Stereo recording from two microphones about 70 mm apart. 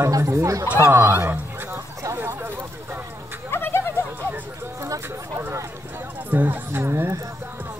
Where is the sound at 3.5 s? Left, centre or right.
Left.